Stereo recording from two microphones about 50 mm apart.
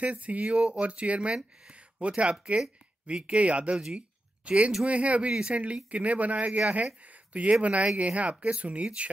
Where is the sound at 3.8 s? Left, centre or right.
Right.